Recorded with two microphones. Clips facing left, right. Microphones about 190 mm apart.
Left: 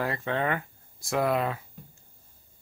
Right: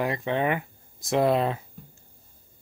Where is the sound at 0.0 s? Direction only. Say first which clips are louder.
Right 3 dB; 20° right (ahead or behind).